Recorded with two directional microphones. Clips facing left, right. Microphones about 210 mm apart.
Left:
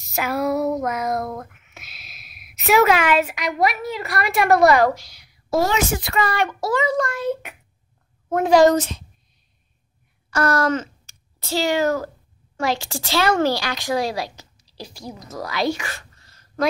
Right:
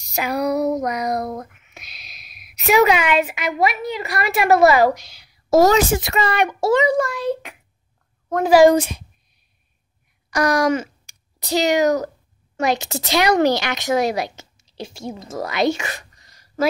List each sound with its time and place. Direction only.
0.0 s female singing: centre (ahead or behind)
0.6 s music: 20° right (ahead or behind)
0.8 s a child's voice: centre (ahead or behind)
1.1 s a child's voice: 20° right (ahead or behind)
1.6 s speech: 5° left (ahead or behind)
4.9 s a woman's voice: 25° right (ahead or behind)
5.5 s a woman's voice: 40° right (ahead or behind)
5.9 s a child's voice: 25° right (ahead or behind)
7.0 s a child's voice: centre (ahead or behind)
10.3 s speech: 15° right (ahead or behind)